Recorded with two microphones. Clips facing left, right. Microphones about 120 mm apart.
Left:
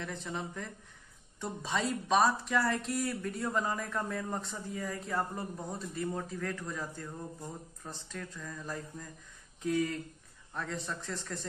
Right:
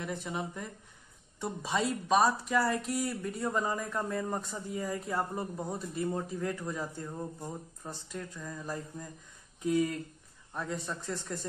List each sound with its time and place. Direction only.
0.0 s speech: 15° right (ahead or behind)
3.2 s speech: 15° right (ahead or behind)
3.5 s speech: 5° right (ahead or behind)
10.5 s speech: 15° right (ahead or behind)